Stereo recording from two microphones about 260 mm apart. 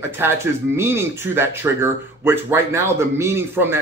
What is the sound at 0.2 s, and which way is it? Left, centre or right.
Speech, centre.